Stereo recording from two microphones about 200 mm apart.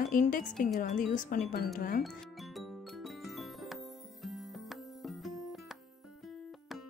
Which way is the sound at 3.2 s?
Centre (ahead or behind).